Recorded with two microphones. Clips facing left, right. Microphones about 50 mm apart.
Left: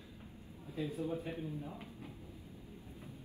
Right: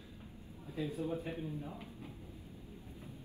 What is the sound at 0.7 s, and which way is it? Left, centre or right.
Speech, right.